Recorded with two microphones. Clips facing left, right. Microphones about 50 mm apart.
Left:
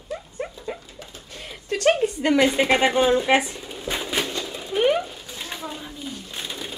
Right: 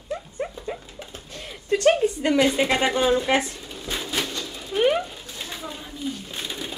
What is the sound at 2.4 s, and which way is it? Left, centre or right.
Speech, left.